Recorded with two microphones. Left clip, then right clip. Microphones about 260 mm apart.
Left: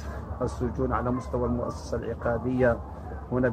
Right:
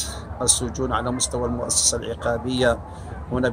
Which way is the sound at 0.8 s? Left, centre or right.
Centre.